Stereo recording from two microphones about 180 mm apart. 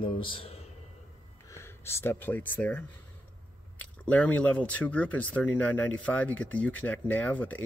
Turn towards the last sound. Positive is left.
turn(degrees=10)  # may be behind; listen again after turning